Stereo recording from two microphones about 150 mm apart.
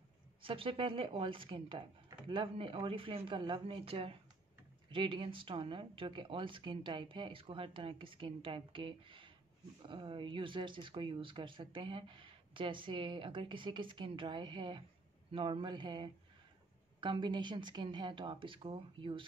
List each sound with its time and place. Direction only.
0.4 s speech: 35° right (ahead or behind)